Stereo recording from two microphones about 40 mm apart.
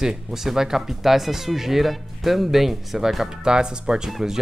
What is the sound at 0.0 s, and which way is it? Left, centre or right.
Speech, centre.